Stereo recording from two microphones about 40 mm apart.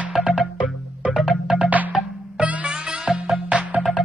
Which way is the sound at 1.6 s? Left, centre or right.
Right.